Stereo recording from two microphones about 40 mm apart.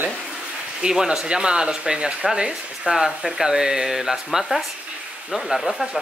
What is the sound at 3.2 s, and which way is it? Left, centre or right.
Speech, centre.